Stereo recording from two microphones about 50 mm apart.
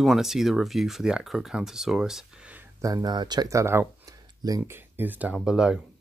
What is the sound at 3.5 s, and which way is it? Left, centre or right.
Speech, right.